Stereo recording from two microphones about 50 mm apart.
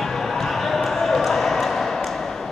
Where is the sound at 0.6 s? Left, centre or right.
Centre.